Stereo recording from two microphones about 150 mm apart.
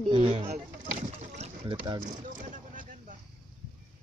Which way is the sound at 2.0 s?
60° right (ahead or behind).